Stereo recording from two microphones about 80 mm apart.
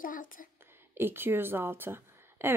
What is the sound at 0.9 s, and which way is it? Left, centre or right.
A woman's voice, right.